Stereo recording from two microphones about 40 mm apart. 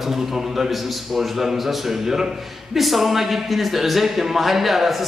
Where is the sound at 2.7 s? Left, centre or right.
Centre.